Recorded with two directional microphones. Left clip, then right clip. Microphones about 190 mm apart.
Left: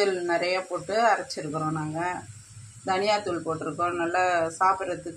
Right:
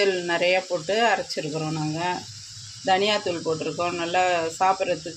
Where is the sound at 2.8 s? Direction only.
40° right (ahead or behind).